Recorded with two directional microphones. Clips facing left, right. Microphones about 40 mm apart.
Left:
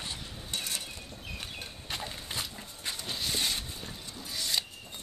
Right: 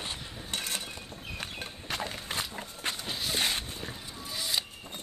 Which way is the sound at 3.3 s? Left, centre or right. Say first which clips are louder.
Right 5 dB; right.